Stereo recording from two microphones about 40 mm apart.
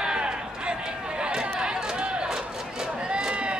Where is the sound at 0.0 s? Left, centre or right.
Right.